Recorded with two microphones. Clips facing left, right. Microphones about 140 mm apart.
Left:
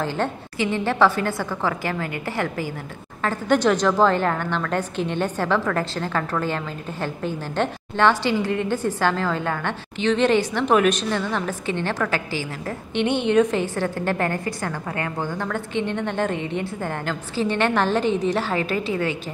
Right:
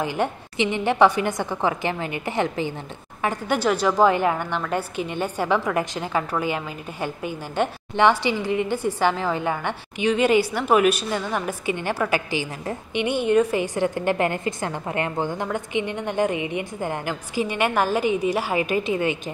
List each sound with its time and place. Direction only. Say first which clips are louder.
0.0 s a woman's voice: even; 15° right (ahead or behind)